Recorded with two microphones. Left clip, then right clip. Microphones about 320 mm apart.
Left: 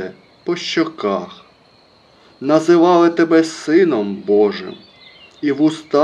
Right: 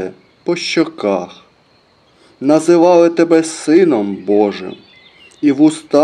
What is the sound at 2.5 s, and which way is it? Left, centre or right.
Speech, right.